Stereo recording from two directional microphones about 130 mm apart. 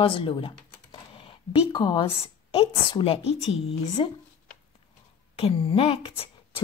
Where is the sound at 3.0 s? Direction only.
50° left (ahead or behind).